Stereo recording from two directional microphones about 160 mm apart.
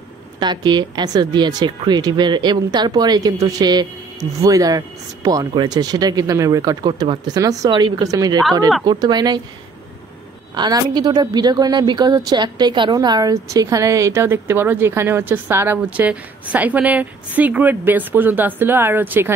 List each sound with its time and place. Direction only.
0.4 s speech: 25° right (ahead or behind)
10.5 s a woman's voice: 25° right (ahead or behind)